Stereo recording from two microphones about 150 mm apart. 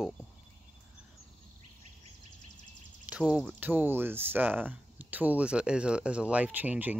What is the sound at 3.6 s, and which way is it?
Speech, 15° right (ahead or behind).